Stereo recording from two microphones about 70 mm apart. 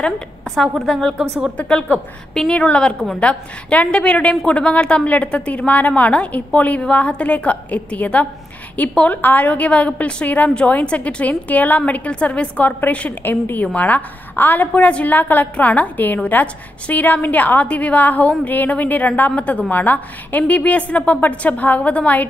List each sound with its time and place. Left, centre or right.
0.7 s a woman's voice: centre
1.6 s a woman's voice: centre; by 14.7 s left
14.7 s a woman's voice: centre